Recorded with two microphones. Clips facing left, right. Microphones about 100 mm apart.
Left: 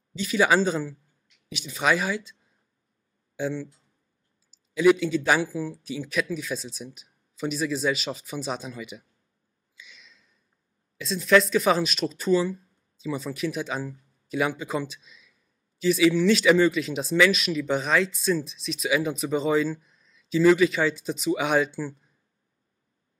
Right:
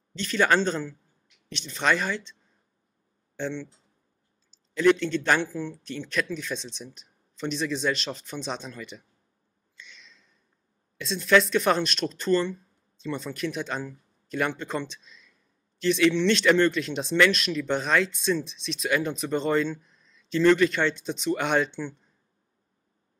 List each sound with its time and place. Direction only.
0.1 s speech: 5° left (ahead or behind)
3.3 s speech: 5° left (ahead or behind)
9.8 s a sound: 5° left (ahead or behind)
11.0 s speech: centre (ahead or behind)